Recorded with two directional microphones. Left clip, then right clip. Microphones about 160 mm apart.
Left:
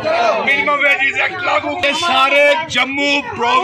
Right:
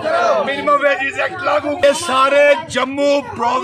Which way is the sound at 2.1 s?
30° right (ahead or behind).